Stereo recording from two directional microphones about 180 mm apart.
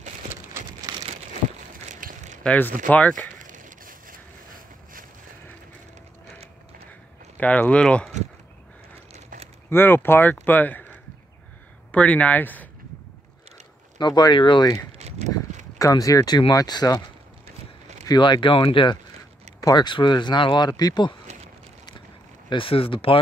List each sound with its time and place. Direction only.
0.9 s crumpling: 20° right (ahead or behind)
1.9 s a sound: 45° right (ahead or behind)
2.4 s speech: 10° left (ahead or behind)
3.3 s vehicle: 45° right (ahead or behind)
7.3 s speech: 10° left (ahead or behind)
9.1 s a sound: 40° right (ahead or behind)
9.7 s speech: 10° left (ahead or behind)
13.9 s speech: 25° left (ahead or behind)
14.9 s a sound: 40° right (ahead or behind)
15.8 s speech: 20° left (ahead or behind)
18.0 s speech: 25° left (ahead or behind)
21.3 s a sound: 40° right (ahead or behind)
22.5 s speech: 30° left (ahead or behind)